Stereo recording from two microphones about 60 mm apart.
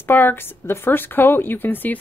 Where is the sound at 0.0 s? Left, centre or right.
Left.